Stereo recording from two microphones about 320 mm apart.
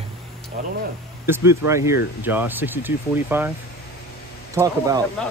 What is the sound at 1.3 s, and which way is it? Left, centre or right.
Speech, centre.